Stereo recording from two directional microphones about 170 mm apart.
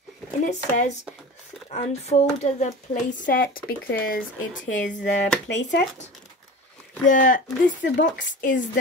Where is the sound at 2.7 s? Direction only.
55° left (ahead or behind).